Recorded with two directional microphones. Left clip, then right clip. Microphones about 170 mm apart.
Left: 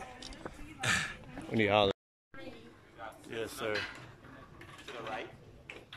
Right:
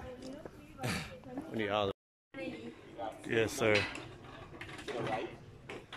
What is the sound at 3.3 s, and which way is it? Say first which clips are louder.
Speech: right 7 dB; 10° right (ahead or behind).